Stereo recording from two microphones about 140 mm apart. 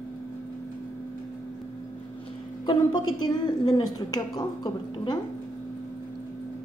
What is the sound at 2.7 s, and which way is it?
A woman's voice, 35° left (ahead or behind).